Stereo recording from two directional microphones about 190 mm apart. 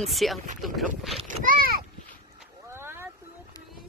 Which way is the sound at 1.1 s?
45° right (ahead or behind).